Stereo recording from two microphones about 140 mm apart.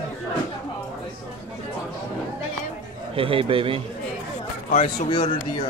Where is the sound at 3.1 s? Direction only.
40° right (ahead or behind).